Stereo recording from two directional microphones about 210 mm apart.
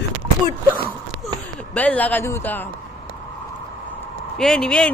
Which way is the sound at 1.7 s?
5° left (ahead or behind).